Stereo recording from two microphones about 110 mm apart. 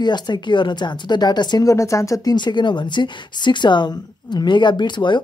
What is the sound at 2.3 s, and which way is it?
Speech, 45° left (ahead or behind).